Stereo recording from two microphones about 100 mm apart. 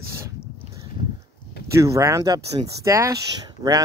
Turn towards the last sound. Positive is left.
turn(degrees=-40)  # may be behind; listen again after turning